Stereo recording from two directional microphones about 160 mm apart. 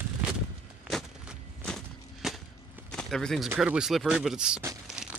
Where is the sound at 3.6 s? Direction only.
5° right (ahead or behind).